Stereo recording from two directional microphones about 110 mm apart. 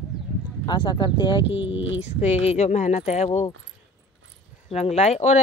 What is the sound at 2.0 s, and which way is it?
Speech, 80° left.